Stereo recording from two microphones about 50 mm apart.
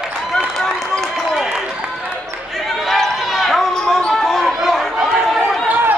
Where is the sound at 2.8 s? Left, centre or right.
Centre.